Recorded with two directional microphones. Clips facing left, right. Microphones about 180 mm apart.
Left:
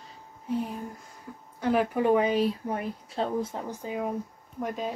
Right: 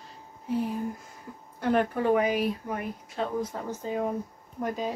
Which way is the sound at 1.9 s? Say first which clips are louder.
Left 1 dB; 20° left (ahead or behind).